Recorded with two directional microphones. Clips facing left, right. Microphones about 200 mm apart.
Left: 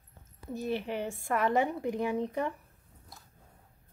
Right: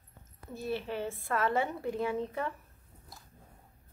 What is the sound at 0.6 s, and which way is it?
A woman's voice, 15° left (ahead or behind).